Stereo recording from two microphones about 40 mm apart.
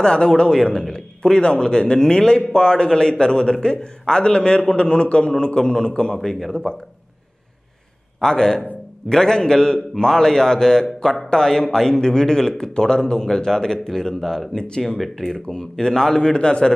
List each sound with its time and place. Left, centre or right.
0.0 s speech: left
8.2 s a man's voice: centre
15.0 s a man's voice: centre; by 16.7 s left